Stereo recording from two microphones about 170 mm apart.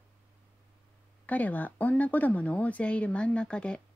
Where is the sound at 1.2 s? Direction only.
10° left (ahead or behind).